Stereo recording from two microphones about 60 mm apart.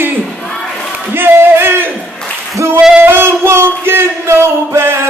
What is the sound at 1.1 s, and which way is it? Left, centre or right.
Singing, right.